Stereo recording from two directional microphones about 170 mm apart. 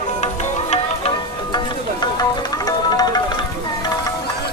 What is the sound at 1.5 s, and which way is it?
Music, 25° left (ahead or behind).